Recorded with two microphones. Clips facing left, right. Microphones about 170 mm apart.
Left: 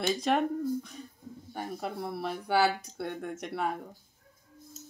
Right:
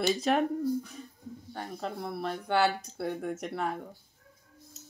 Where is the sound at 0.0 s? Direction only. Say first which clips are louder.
Right 1 dB; 5° right (ahead or behind).